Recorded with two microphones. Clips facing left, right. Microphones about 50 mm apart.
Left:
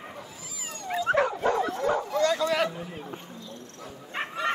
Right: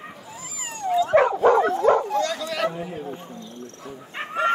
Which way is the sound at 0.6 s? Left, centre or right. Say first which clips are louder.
Right 5 dB; right.